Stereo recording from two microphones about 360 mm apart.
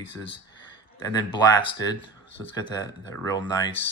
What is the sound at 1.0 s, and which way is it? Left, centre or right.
Speech, centre.